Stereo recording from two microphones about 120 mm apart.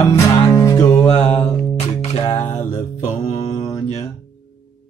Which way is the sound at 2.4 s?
75° left (ahead or behind).